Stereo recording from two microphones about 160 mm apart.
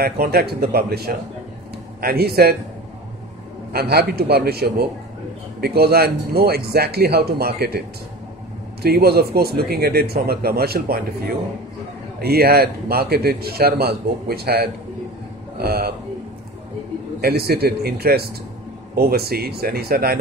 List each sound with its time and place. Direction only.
0.0 s a man's voice: 75° right (ahead or behind)
3.7 s a man's voice: 85° right
8.8 s a man's voice: 75° right (ahead or behind)
12.2 s a man's voice: 75° right (ahead or behind)
17.2 s a man's voice: 85° right